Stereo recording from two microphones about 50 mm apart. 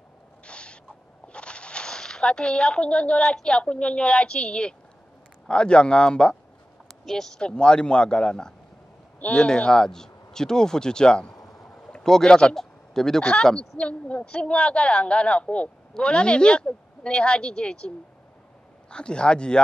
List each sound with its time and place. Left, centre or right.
0.5 s owl: left
1.2 s a woman's voice: left
6.9 s a sound: centre
7.3 s a woman's voice: centre
11.4 s a sound: centre
13.2 s a woman's voice: left